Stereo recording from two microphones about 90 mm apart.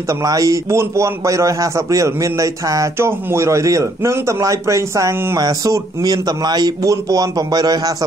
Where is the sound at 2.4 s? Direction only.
40° right (ahead or behind).